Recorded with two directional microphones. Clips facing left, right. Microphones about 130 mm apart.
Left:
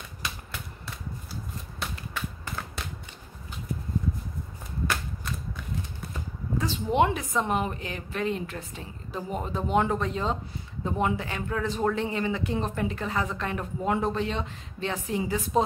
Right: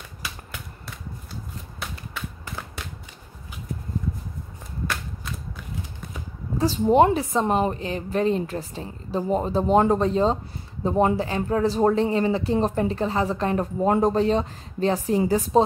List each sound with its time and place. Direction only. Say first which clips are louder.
6.6 s a woman's voice: right 7 dB; 40° right (ahead or behind)